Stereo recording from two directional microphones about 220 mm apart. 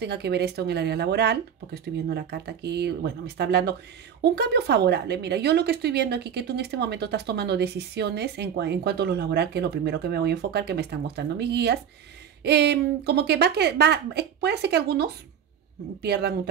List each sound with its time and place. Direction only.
0.0 s a woman's voice: 50° right (ahead or behind)